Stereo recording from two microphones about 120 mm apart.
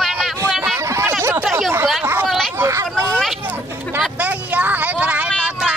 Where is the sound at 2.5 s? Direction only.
25° right (ahead or behind).